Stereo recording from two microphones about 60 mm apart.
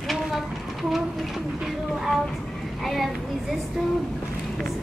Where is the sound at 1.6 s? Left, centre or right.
Centre.